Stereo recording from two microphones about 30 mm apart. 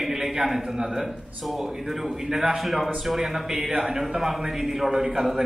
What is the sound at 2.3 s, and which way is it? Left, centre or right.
Speech, centre.